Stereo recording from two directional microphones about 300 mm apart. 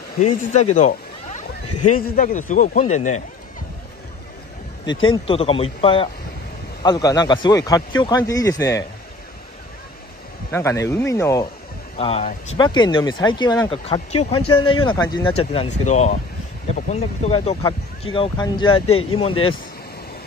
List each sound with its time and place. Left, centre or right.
0.5 s a man's voice: left
4.8 s speech: centre
10.5 s a man's voice: centre
18.9 s speech: left
19.1 s speech: centre